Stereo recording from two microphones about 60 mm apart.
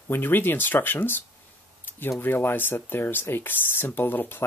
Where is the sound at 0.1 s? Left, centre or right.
Left.